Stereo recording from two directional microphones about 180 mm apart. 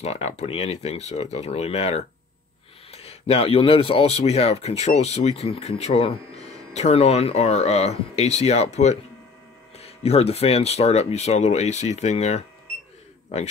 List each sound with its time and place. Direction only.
0.0 s speech: 35° left (ahead or behind)